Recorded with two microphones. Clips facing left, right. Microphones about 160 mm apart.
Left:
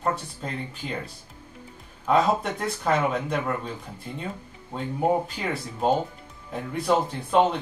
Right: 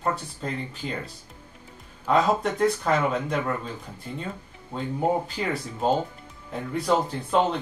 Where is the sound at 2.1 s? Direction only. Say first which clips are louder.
Even; 5° left (ahead or behind).